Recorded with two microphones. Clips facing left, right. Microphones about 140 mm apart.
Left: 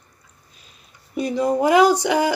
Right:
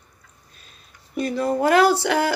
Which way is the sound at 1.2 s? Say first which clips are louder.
Left 2 dB; 15° left (ahead or behind).